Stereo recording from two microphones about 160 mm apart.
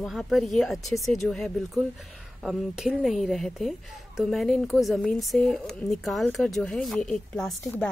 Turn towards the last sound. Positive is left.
turn(degrees=5)  # may be behind; listen again after turning